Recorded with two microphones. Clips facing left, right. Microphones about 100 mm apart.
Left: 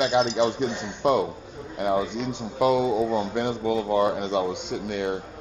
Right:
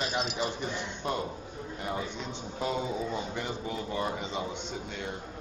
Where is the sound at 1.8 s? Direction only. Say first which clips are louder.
Left 11 dB; 65° left (ahead or behind).